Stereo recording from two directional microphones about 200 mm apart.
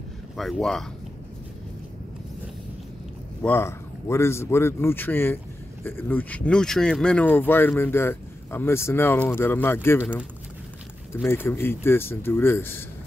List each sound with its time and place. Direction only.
0.4 s speech: centre (ahead or behind)
3.4 s speech: 10° left (ahead or behind)
11.2 s speech: 10° left (ahead or behind)